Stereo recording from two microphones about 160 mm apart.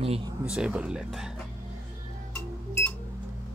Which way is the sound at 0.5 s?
5° right (ahead or behind).